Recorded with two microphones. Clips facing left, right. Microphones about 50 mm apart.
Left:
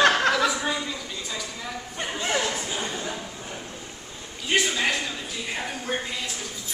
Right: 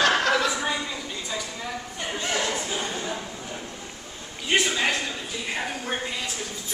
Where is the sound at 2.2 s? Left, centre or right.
Centre.